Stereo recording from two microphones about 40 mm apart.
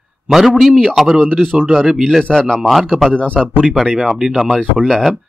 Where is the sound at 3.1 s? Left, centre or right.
Left.